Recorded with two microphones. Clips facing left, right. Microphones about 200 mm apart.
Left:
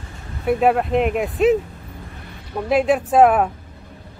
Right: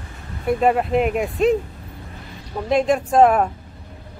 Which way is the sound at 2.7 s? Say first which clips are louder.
Left 1 dB; 5° left (ahead or behind).